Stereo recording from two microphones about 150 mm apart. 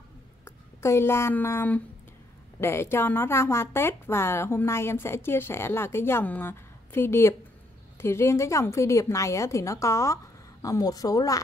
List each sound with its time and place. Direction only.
0.7 s a woman's voice: 20° left (ahead or behind)